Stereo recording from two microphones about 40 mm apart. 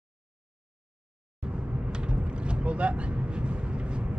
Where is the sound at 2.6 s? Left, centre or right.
Right.